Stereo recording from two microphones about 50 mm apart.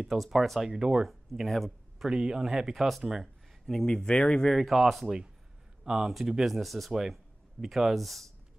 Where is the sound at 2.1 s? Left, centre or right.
Centre.